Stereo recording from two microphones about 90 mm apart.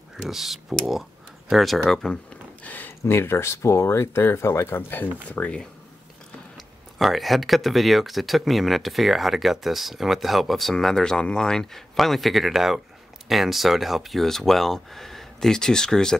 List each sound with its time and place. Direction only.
0.2 s speech: 5° right (ahead or behind)
2.6 s speech: 20° left (ahead or behind)
5.3 s speech: 10° left (ahead or behind)
6.5 s speech: centre (ahead or behind)